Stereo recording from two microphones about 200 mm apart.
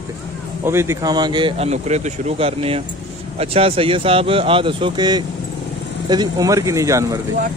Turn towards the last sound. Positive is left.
turn(degrees=-15)  # may be behind; listen again after turning